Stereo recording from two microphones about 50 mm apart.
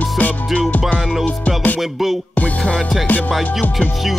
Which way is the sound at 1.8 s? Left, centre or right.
Centre.